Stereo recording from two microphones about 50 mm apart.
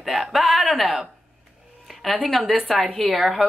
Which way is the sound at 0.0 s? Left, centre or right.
Centre.